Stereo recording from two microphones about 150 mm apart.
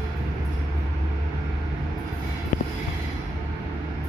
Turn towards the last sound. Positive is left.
turn(degrees=50)  # may be behind; listen again after turning